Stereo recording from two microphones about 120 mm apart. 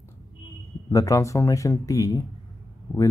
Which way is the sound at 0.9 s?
30° left (ahead or behind).